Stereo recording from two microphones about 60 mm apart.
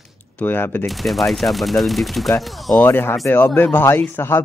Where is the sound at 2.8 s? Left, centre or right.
Left.